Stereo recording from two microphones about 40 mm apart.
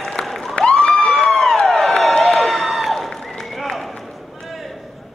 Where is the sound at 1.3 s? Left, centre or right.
Centre.